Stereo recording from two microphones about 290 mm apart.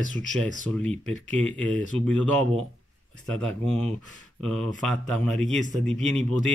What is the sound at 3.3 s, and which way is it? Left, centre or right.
Speech, centre.